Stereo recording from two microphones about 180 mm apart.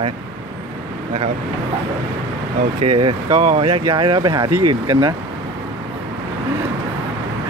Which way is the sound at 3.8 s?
25° right (ahead or behind).